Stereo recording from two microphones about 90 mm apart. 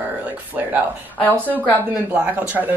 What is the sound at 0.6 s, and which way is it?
Speech, 20° right (ahead or behind).